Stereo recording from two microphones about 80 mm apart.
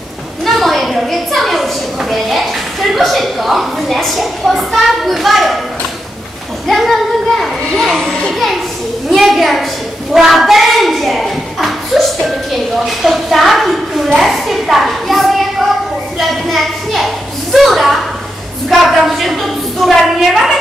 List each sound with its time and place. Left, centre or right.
0.5 s a woman's voice: centre
6.7 s a woman's voice: centre